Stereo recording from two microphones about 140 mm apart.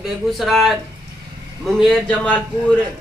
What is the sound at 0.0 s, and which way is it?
Speech, centre (ahead or behind).